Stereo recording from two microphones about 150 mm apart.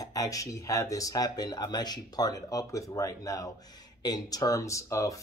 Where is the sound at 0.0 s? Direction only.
25° left (ahead or behind).